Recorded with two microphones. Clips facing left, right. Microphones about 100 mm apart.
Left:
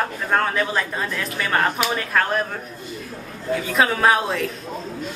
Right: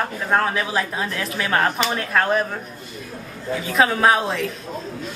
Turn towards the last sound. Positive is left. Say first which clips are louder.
# even
turn(degrees=0)  # may be behind; listen again after turning